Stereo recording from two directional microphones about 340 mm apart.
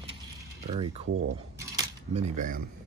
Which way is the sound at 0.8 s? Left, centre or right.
Right.